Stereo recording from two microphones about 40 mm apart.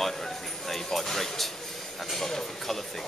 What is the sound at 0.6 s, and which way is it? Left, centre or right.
Speech, centre.